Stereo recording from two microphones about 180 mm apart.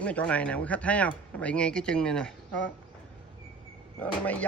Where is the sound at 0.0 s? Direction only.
5° left (ahead or behind).